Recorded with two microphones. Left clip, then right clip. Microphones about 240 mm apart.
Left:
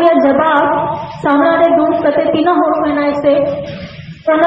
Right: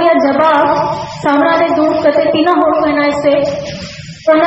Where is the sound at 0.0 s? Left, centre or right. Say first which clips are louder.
Even; left.